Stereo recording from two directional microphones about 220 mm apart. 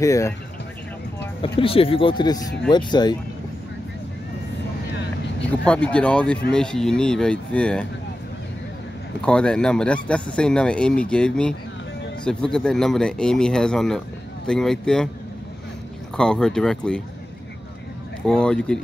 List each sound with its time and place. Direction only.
0.0 s speech: 15° left (ahead or behind)
1.6 s speech: 25° left (ahead or behind)
5.5 s speech: 5° left (ahead or behind)
9.2 s speech: 5° left (ahead or behind)
16.2 s speech: 5° left (ahead or behind)
18.2 s speech: 5° left (ahead or behind)